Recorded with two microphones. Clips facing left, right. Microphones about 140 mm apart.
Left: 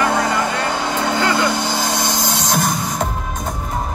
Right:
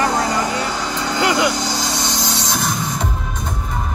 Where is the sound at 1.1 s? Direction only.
15° right (ahead or behind).